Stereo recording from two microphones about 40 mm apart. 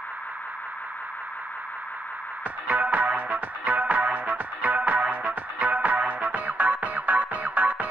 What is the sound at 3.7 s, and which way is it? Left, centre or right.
Music, right.